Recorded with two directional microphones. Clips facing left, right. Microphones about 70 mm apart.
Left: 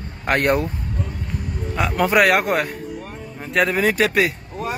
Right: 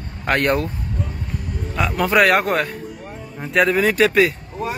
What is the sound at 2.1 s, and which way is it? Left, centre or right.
Speech, centre.